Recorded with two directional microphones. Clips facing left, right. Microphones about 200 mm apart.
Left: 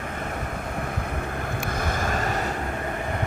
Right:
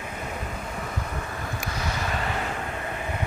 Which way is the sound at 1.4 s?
50° left (ahead or behind).